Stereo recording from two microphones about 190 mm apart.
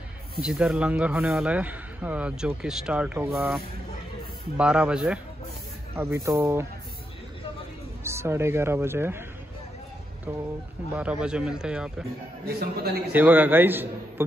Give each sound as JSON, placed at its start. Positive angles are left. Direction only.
{"t": 0.4, "sound": "speech", "side_deg": -5}
{"t": 4.6, "sound": "a man's voice", "side_deg": -5}
{"t": 8.0, "sound": "speech", "side_deg": -15}
{"t": 11.0, "sound": "speech", "side_deg": -5}
{"t": 12.4, "sound": "a man's voice", "side_deg": -55}
{"t": 13.1, "sound": "a man's voice", "side_deg": -10}